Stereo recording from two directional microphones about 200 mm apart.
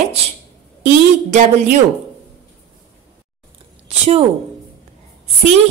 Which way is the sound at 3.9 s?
30° right (ahead or behind).